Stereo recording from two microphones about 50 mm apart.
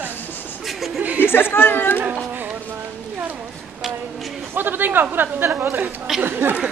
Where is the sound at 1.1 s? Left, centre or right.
Left.